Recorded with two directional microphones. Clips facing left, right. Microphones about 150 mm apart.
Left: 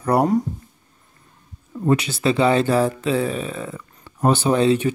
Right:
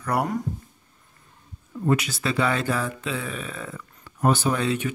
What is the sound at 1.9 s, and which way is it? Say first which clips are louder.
Speech: left 5 dB; 30° left (ahead or behind).